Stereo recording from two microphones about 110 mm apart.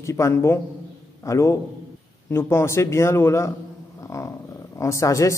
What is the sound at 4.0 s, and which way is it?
Dog, 30° left (ahead or behind).